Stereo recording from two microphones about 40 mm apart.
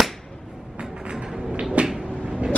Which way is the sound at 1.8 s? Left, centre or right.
Right.